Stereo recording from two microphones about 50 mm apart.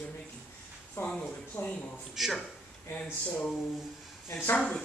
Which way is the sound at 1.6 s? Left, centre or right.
Left.